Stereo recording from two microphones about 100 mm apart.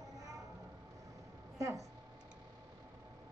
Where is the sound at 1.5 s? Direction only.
35° right (ahead or behind).